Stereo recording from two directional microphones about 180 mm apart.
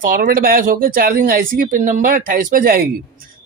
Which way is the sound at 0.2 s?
55° right (ahead or behind).